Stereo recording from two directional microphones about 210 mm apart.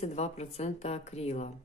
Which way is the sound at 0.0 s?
30° left (ahead or behind).